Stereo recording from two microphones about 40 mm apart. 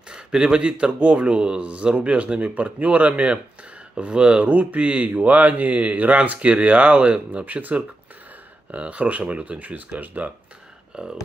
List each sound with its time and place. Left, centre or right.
0.1 s a sound: right
0.6 s speech: right
10.9 s speech: centre